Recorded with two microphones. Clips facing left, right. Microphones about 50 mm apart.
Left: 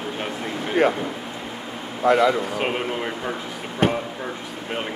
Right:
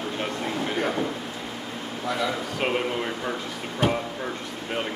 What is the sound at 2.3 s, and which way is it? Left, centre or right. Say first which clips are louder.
Speech: left 2 dB; centre.